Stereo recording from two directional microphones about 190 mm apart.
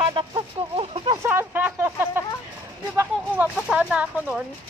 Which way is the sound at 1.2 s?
10° right (ahead or behind).